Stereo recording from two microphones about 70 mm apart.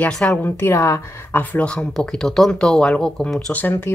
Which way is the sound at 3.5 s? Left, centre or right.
Left.